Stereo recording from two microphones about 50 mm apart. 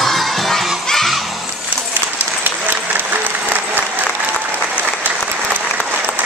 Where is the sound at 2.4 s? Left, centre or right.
Right.